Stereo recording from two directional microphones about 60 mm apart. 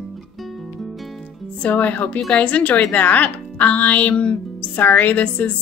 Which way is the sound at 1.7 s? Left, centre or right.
Left.